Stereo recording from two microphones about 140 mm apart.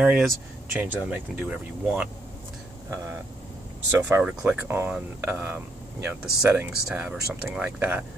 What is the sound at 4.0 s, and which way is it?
Speech, 10° right (ahead or behind).